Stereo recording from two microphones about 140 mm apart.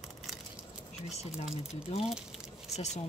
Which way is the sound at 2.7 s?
50° left (ahead or behind).